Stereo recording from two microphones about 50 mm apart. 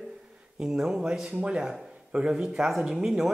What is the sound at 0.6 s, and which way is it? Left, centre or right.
Speech, centre.